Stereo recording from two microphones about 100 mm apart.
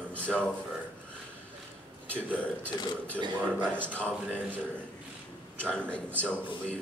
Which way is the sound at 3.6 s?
10° left (ahead or behind).